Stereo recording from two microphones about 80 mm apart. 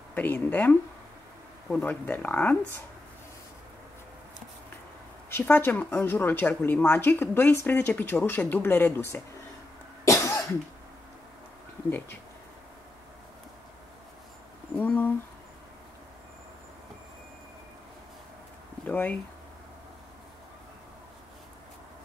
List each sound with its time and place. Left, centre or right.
0.1 s a woman's voice: left
5.4 s a woman's voice: left
10.0 s cough: left
14.8 s a woman's voice: left
18.9 s speech: left